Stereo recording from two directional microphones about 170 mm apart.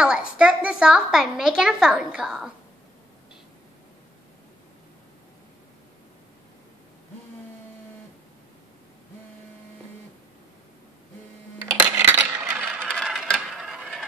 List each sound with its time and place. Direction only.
0.0 s a woman's voice: 5° right (ahead or behind)
11.8 s coin: 15° right (ahead or behind)